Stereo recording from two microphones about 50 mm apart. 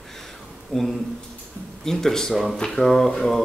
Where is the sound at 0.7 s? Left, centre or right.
Centre.